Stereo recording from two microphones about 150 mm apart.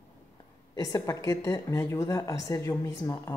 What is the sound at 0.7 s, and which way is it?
A woman's voice, 25° left (ahead or behind).